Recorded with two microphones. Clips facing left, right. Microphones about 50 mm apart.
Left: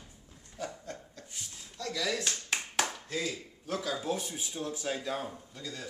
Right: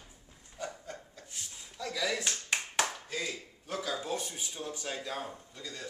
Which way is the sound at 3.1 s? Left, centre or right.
Centre.